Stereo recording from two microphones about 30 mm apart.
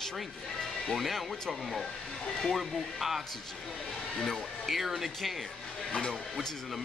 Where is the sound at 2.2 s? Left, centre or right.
Centre.